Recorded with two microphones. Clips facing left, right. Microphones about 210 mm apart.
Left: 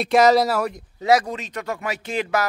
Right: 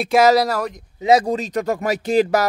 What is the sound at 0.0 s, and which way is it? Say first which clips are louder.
Speech: right 1 dB; 5° right (ahead or behind).